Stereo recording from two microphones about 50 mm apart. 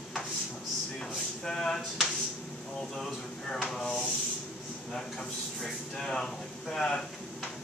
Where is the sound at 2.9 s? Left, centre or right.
Centre.